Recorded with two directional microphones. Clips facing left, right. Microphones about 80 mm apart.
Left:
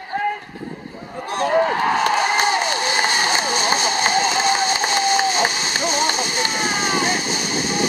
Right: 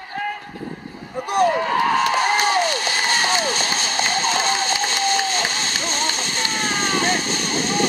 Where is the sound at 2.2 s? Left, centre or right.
Centre.